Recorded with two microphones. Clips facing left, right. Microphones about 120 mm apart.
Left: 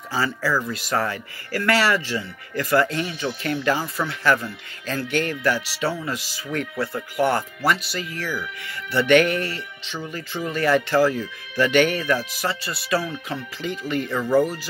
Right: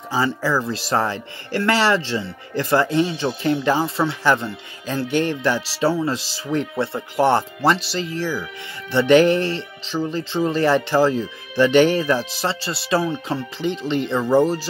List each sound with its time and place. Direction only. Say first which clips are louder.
0.1 s speech: right 3 dB; 20° right (ahead or behind)
0.6 s speech: right 3 dB; 30° right (ahead or behind)